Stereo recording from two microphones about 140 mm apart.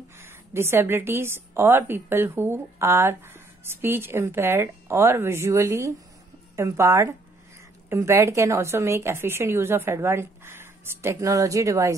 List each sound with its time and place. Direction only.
0.2 s a woman's voice: 15° right (ahead or behind)